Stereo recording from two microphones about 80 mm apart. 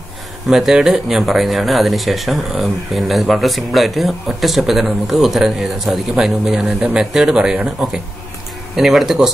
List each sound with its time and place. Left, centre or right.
0.5 s speech: centre